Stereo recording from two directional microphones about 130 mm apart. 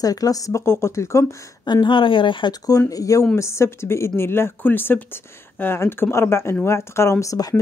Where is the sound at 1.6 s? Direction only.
35° left (ahead or behind).